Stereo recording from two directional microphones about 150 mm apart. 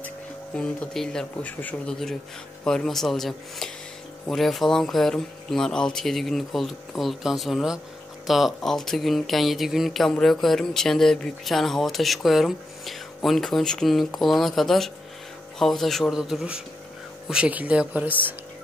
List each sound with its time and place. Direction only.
0.6 s speech: 5° left (ahead or behind)